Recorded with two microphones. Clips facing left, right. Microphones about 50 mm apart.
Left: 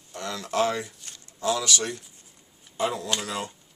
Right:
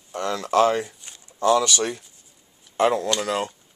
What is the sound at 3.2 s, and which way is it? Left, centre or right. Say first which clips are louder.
Speech: right 7 dB; right.